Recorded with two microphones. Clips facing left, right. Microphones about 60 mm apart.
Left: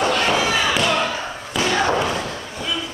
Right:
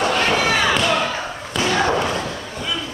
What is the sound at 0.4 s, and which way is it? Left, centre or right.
Slam, right.